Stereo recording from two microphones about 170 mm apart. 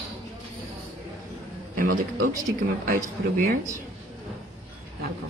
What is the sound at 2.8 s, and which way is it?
Speech, 55° right (ahead or behind).